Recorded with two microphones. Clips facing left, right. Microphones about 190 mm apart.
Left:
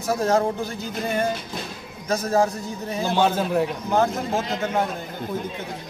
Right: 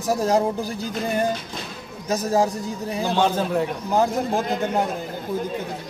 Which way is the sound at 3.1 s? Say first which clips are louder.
Left 1 dB; 10° left (ahead or behind).